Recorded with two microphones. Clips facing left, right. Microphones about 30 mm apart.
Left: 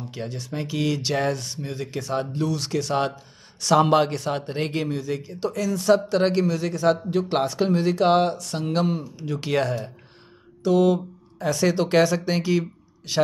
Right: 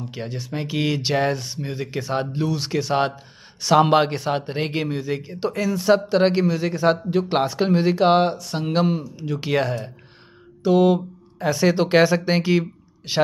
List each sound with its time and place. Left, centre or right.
0.1 s a man's voice: centre
10.6 s mantra: centre
11.3 s a man's voice: centre